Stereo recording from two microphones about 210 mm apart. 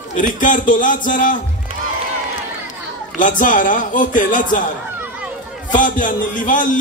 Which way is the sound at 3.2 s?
40° left (ahead or behind).